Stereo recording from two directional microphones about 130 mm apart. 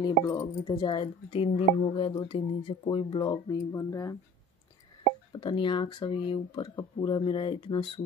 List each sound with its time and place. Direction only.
0.0 s speech: 30° left (ahead or behind)
5.3 s speech: 40° left (ahead or behind)